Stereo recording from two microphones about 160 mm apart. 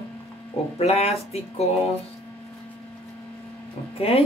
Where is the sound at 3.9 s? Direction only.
40° left (ahead or behind).